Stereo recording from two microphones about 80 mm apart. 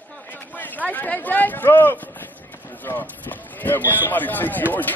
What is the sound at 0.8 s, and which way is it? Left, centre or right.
Speech, centre.